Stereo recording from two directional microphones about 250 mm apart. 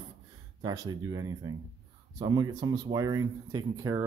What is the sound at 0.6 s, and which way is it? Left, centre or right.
Speech, centre.